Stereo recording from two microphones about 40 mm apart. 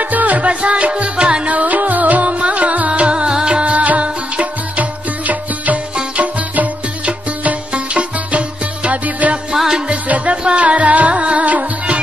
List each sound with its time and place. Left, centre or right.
0.0 s music: right
1.5 s music: right
3.6 s music: right
10.3 s music: right